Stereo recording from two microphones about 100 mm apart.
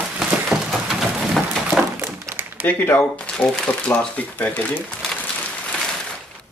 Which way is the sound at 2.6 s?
20° left (ahead or behind).